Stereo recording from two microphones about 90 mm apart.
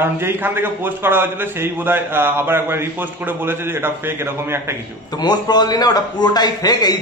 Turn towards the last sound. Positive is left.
turn(degrees=50)  # may be behind; listen again after turning